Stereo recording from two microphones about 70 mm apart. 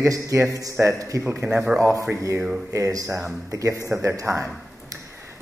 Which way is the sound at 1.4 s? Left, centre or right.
Centre.